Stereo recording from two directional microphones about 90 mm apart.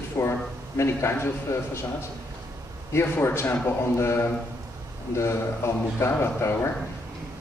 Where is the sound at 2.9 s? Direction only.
30° left (ahead or behind).